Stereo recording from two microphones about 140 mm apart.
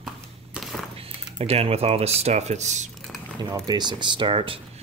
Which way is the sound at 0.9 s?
45° right (ahead or behind).